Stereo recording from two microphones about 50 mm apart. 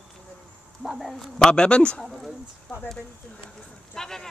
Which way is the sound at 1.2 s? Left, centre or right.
Centre.